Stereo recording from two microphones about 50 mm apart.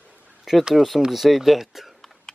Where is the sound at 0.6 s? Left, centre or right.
Centre.